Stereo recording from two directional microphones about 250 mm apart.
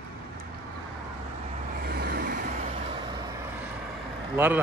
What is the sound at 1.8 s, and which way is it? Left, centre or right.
Vehicle, right.